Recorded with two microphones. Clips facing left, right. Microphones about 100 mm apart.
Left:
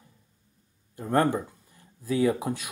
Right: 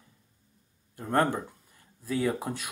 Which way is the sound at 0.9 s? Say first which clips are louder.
Left 2 dB; 5° left (ahead or behind).